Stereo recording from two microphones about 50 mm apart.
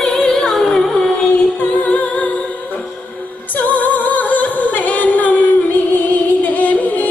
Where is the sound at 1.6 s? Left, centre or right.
Left.